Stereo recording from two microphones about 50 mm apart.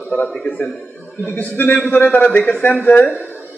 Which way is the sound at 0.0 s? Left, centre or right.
Left.